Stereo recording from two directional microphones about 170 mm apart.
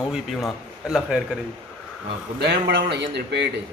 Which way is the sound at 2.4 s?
85° right.